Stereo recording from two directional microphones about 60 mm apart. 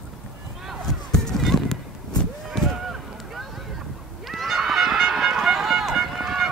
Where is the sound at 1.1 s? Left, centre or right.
Centre.